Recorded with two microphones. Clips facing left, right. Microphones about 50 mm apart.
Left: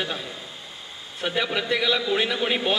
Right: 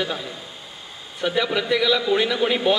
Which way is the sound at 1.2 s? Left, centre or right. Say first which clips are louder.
Right 3 dB; left.